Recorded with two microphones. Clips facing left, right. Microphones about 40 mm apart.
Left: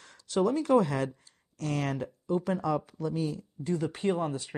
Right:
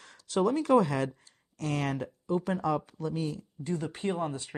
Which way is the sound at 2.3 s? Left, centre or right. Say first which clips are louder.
Even; centre.